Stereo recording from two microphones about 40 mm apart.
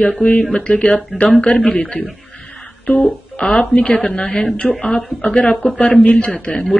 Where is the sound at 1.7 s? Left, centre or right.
Left.